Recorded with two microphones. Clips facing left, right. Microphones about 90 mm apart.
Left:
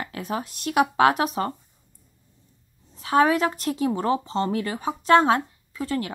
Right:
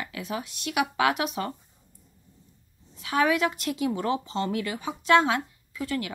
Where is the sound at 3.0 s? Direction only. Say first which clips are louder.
Left 4 dB; 35° left (ahead or behind).